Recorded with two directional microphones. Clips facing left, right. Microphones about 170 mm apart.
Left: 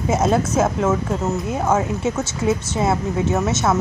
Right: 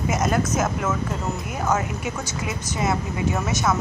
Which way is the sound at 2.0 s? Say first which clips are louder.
Left 7 dB; 25° left (ahead or behind).